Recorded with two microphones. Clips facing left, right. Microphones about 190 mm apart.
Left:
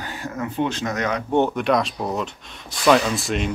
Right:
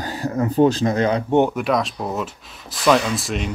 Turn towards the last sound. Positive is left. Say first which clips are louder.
# even
turn(degrees=0)  # may be behind; listen again after turning